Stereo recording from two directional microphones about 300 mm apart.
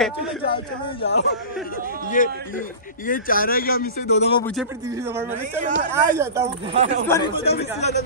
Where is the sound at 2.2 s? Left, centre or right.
Left.